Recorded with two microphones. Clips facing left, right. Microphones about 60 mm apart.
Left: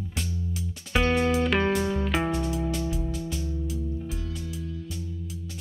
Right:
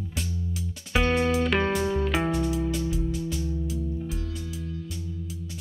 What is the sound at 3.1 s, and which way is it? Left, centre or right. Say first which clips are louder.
Music: right 2 dB; left.